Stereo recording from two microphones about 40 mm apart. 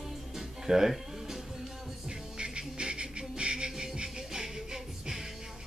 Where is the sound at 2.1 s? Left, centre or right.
Right.